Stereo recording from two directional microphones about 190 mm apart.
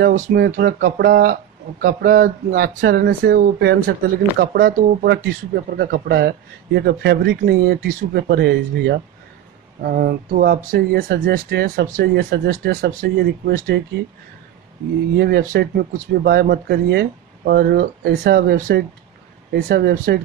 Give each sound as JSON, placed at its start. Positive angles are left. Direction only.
{"t": 0.0, "sound": "speech", "side_deg": -45}
{"t": 5.0, "sound": "speech", "side_deg": -60}
{"t": 15.1, "sound": "speech", "side_deg": -60}